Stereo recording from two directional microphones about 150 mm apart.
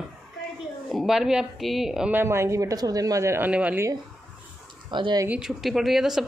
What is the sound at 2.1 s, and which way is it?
Speech, 15° right (ahead or behind).